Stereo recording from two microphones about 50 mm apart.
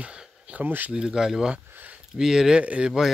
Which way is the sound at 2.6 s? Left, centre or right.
Right.